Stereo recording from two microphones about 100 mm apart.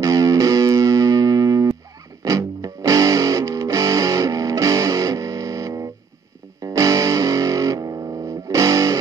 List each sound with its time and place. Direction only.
0.0 s music: 35° right (ahead or behind)